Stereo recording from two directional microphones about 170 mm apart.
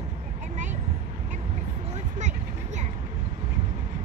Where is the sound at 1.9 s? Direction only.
45° right (ahead or behind).